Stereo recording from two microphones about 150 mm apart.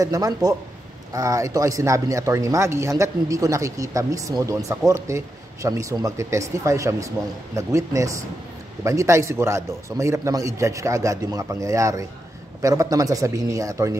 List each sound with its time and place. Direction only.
0.0 s speech: 25° right (ahead or behind)